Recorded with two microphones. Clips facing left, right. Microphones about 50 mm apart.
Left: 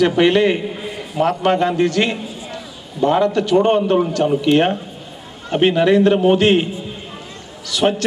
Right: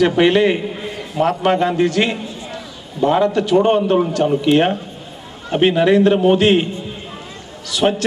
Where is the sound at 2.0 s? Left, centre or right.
Centre.